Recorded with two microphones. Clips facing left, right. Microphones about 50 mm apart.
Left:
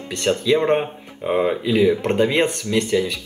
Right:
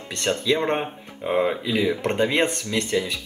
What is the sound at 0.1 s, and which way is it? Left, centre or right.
Speech, centre.